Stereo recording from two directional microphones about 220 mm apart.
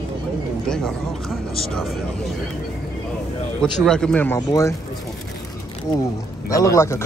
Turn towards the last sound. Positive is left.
turn(degrees=10)  # may be behind; listen again after turning